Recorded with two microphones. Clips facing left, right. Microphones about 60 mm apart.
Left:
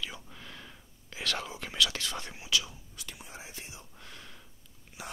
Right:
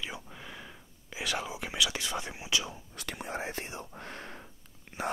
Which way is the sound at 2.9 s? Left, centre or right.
Right.